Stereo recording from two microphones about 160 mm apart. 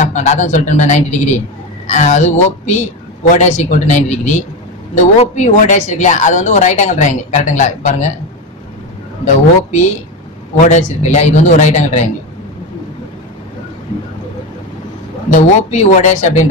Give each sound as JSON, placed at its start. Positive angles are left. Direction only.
{"t": 0.0, "sound": "speech", "side_deg": 50}
{"t": 9.2, "sound": "speech", "side_deg": 50}
{"t": 15.3, "sound": "speech", "side_deg": 50}